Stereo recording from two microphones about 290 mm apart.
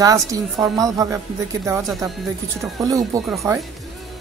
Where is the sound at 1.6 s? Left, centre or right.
Centre.